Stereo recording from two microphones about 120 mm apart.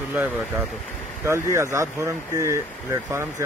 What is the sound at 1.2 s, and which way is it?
Speech, 25° right (ahead or behind).